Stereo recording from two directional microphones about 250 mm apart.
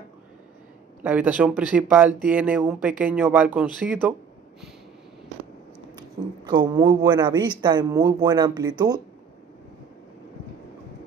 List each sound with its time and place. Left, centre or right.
1.0 s speech: centre
6.4 s speech: centre